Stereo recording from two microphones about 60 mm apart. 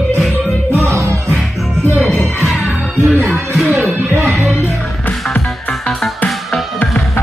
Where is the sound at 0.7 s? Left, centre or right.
Right.